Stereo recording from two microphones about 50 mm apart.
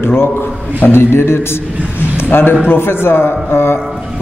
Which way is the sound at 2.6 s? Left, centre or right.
Left.